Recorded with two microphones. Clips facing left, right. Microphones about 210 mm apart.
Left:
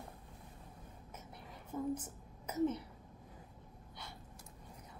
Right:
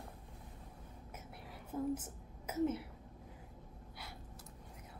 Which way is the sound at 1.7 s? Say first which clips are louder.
Right 1 dB; 5° right (ahead or behind).